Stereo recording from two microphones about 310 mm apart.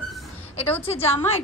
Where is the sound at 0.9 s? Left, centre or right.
Centre.